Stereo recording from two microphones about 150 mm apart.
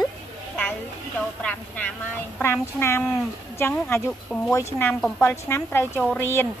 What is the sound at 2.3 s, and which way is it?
A woman's voice, 15° left (ahead or behind).